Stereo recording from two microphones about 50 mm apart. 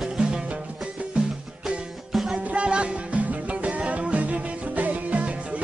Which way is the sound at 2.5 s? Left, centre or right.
Right.